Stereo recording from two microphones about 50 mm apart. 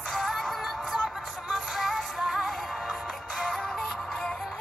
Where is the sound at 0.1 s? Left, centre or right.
Centre.